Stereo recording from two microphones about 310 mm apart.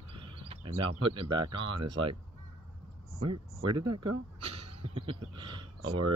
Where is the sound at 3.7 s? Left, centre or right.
Centre.